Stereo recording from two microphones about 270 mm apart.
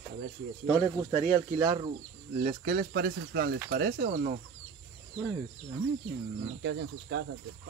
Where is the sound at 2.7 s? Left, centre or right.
Right.